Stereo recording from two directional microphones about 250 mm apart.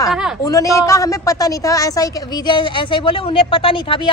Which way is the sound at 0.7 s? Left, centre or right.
Centre.